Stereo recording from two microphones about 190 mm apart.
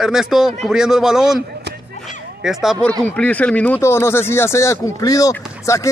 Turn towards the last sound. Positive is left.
turn(degrees=15)  # may be behind; listen again after turning